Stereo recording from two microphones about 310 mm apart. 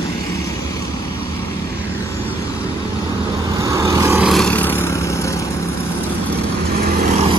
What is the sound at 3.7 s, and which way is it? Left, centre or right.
Vehicle, centre.